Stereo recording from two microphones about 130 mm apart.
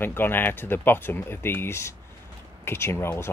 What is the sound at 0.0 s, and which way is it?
Speech, 15° left (ahead or behind).